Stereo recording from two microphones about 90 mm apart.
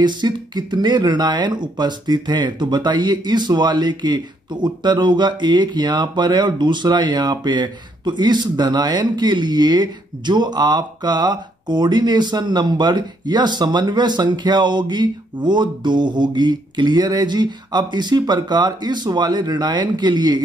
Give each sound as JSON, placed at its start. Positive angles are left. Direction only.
{"t": 0.0, "sound": "speech", "side_deg": -55}